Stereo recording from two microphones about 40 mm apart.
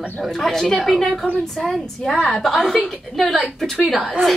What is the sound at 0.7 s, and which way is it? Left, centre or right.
A woman's voice, centre.